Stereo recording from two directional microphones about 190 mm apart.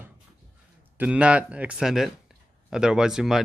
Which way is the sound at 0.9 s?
5° right (ahead or behind).